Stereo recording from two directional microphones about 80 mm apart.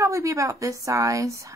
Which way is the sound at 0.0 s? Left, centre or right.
Right.